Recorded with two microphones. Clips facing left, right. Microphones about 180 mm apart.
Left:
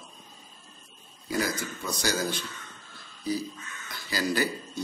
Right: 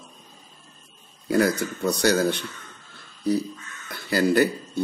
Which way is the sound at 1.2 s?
60° right (ahead or behind).